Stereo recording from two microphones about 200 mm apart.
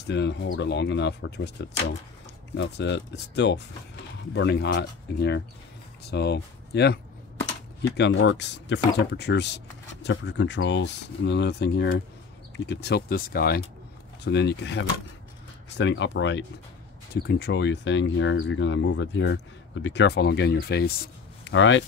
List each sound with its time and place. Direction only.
0.0 s speech: 60° left (ahead or behind)
2.5 s speech: 60° left (ahead or behind)